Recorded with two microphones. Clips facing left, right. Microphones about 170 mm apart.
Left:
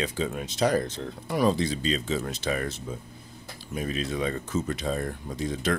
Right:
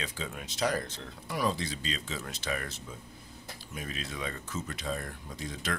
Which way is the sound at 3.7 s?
30° left (ahead or behind).